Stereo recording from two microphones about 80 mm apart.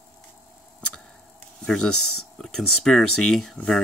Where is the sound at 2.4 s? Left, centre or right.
Centre.